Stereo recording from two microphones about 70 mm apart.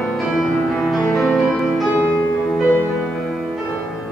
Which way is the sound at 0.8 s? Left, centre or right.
Centre.